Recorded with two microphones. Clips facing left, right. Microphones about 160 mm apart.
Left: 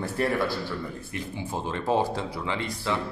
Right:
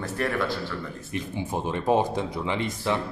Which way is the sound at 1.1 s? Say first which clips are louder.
Right 6 dB; 20° right (ahead or behind).